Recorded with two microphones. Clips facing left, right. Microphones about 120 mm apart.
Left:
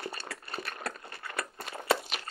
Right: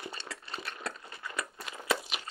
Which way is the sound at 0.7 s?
55° left (ahead or behind).